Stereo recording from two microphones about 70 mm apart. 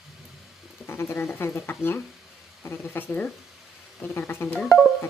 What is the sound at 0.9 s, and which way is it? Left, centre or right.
Speech, left.